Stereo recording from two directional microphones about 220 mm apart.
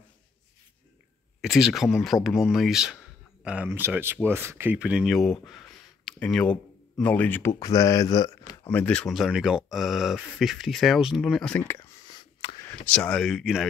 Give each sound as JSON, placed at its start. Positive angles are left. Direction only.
{"t": 1.4, "sound": "speech", "side_deg": 0}
{"t": 8.6, "sound": "speech", "side_deg": 5}
{"t": 12.4, "sound": "a sound", "side_deg": 25}
{"t": 12.6, "sound": "speech", "side_deg": 5}